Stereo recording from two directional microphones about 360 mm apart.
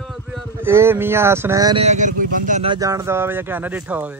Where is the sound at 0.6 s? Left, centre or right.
Centre.